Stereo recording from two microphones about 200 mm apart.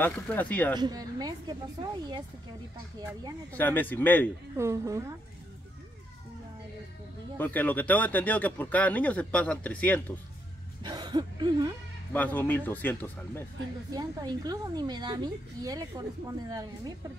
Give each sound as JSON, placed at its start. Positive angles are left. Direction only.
{"t": 0.0, "sound": "speech", "side_deg": 10}
{"t": 0.7, "sound": "a woman's voice", "side_deg": -20}
{"t": 3.5, "sound": "speech", "side_deg": 10}
{"t": 4.6, "sound": "speech", "side_deg": -15}
{"t": 7.3, "sound": "speech", "side_deg": 10}
{"t": 10.8, "sound": "speech", "side_deg": -20}
{"t": 12.1, "sound": "speech", "side_deg": 10}
{"t": 13.9, "sound": "a woman's voice", "side_deg": -20}